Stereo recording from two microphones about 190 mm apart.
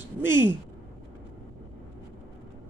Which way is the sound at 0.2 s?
10° right (ahead or behind).